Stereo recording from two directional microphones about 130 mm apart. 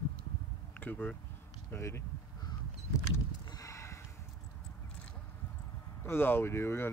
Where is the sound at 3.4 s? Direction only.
30° left (ahead or behind).